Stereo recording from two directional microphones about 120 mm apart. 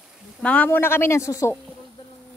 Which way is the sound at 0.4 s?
10° left (ahead or behind).